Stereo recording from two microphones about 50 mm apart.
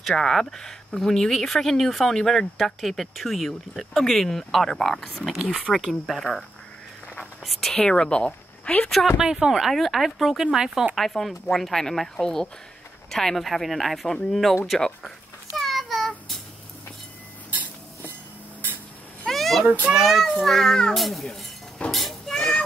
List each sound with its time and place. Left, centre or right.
0.1 s speech: centre
7.4 s a woman's voice: centre
9.2 s speech: centre
9.7 s speech: centre
11.0 s a woman's voice: centre
15.5 s a sound: centre
19.2 s a sound: centre
19.6 s a child's voice: right
19.9 s speech: centre
21.9 s child singing: centre